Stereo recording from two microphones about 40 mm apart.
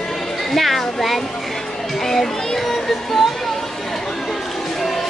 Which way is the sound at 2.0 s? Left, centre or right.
Centre.